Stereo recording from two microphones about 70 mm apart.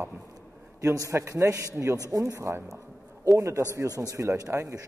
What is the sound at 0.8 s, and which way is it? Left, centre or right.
A man's voice, right.